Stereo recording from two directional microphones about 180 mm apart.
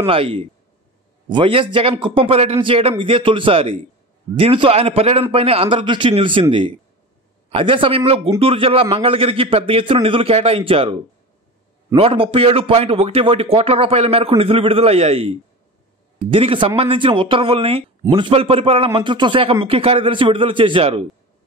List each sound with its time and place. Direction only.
0.0 s a man's voice: 30° right (ahead or behind)
7.5 s a man's voice: 30° right (ahead or behind)